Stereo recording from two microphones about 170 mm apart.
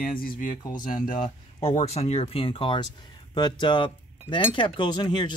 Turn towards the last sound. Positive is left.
turn(degrees=25)  # may be behind; listen again after turning